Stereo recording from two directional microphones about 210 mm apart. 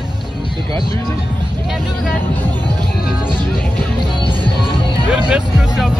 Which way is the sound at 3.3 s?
20° right (ahead or behind).